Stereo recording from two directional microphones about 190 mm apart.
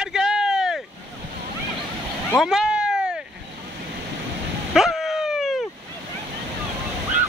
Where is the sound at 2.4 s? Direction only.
Centre (ahead or behind).